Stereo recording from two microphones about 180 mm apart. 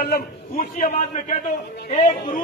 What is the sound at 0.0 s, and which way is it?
A man's voice, 55° left (ahead or behind).